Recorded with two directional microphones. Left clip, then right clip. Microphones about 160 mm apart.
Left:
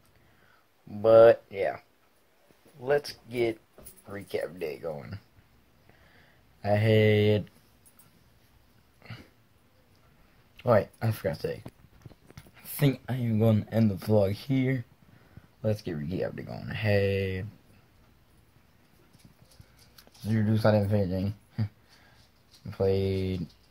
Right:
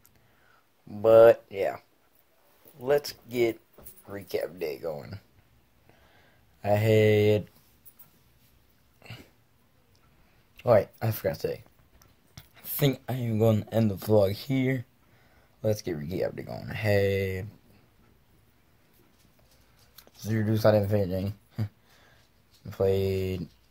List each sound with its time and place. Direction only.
0.8 s speech: 10° right (ahead or behind)
6.6 s speech: 15° right (ahead or behind)
9.0 s a sound: 10° right (ahead or behind)
10.5 s speech: 10° right (ahead or behind)
20.2 s speech: 10° right (ahead or behind)
22.7 s speech: 15° right (ahead or behind)